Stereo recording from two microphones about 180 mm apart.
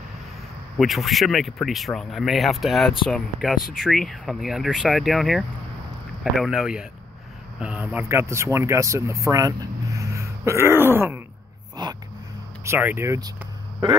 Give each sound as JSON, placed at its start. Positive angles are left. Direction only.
{"t": 0.7, "sound": "speech", "side_deg": 0}
{"t": 11.7, "sound": "a sound", "side_deg": -20}
{"t": 12.6, "sound": "speech", "side_deg": -10}